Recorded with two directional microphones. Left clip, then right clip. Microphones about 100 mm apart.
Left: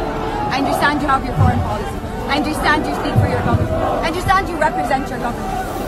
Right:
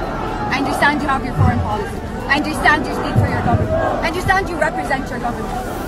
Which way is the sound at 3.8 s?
15° left (ahead or behind).